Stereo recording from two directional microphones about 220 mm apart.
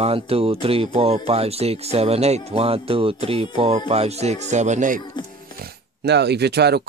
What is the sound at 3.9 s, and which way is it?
Speech, 30° right (ahead or behind).